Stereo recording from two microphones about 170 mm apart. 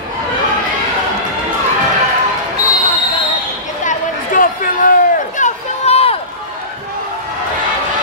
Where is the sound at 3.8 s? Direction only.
55° left (ahead or behind).